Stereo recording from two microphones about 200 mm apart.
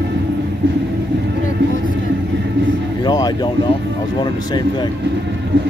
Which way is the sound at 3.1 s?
20° left (ahead or behind).